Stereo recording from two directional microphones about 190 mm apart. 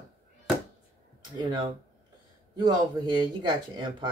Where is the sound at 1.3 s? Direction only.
25° right (ahead or behind).